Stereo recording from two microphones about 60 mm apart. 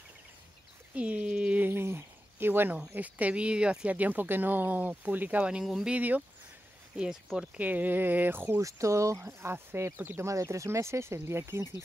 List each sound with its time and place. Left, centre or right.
0.9 s a sound: right
1.7 s a sound: right
3.0 s speech: right
5.6 s speech: centre
5.9 s speech: right
8.5 s speech: right
10.2 s speech: right